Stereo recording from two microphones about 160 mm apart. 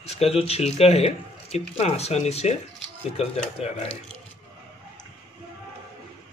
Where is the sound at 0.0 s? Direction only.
40° left (ahead or behind).